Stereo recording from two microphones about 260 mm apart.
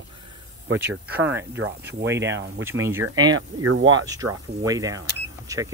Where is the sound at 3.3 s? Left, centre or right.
Right.